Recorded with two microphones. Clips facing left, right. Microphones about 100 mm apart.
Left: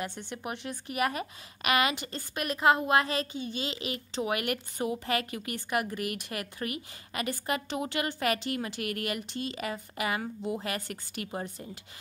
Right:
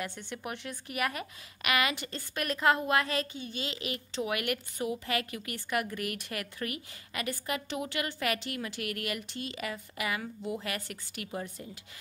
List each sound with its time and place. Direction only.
0.0 s speech: 25° left (ahead or behind)